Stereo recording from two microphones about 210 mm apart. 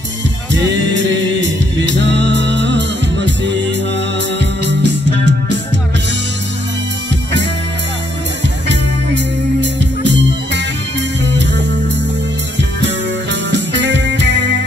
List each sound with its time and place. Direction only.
0.5 s music: 60° right (ahead or behind)
8.6 s music: 55° right (ahead or behind)
12.8 s music: 55° right (ahead or behind)